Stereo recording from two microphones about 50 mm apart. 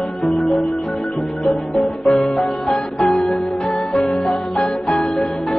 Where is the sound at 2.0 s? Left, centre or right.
Centre.